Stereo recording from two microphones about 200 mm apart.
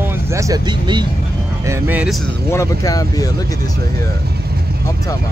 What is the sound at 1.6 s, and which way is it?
Speech, 10° right (ahead or behind).